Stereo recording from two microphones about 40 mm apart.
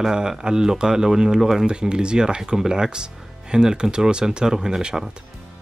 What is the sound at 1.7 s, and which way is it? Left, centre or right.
Speech, right.